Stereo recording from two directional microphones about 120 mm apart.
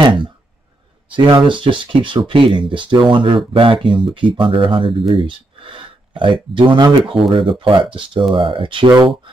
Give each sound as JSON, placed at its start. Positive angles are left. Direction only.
{"t": 0.0, "sound": "speech", "side_deg": -40}